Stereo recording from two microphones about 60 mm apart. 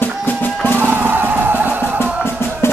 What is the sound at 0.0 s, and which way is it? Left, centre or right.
Music, left.